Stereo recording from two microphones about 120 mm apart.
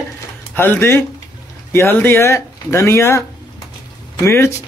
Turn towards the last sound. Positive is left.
turn(degrees=25)  # may be behind; listen again after turning